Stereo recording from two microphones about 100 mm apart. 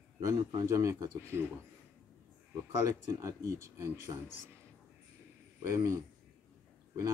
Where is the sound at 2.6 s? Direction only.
30° right (ahead or behind).